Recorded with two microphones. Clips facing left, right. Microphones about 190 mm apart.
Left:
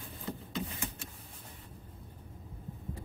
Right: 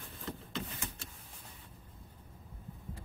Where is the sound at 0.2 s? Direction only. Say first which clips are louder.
Left 3 dB; centre (ahead or behind).